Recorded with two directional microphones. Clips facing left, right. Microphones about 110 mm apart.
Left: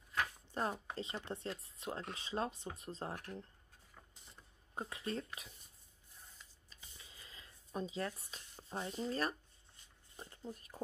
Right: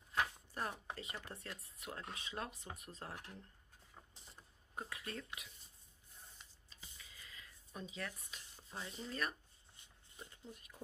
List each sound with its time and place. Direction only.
0.5 s speech: 25° left (ahead or behind)
4.7 s speech: 30° left (ahead or behind)
7.0 s a sound: 30° left (ahead or behind)
8.6 s speech: 35° left (ahead or behind)